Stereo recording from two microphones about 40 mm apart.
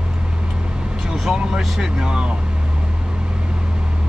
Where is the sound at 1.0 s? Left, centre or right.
Centre.